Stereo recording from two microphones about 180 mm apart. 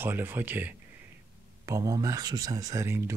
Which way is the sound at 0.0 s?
10° right (ahead or behind).